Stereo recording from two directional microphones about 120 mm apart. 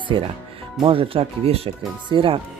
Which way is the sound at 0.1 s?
45° right (ahead or behind).